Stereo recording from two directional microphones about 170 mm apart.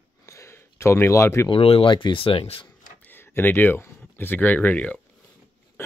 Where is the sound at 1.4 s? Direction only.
35° left (ahead or behind).